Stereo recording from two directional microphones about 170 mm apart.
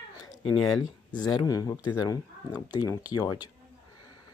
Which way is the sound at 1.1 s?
25° left (ahead or behind).